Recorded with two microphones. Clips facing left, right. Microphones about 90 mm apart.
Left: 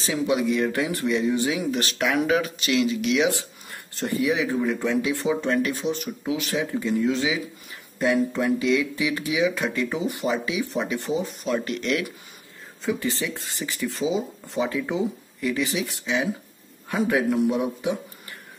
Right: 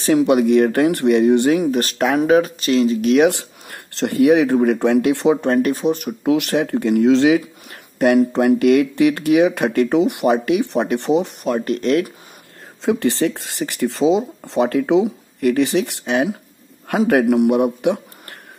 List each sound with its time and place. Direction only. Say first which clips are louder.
0.0 s speech: right 9 dB; 60° right (ahead or behind); by 3.3 s 45° right (ahead or behind)
3.3 s speech: right 7 dB; 70° right (ahead or behind)
11.4 s speech: right 7 dB; 40° right (ahead or behind)
12.8 s speech: right 9 dB; 75° right (ahead or behind)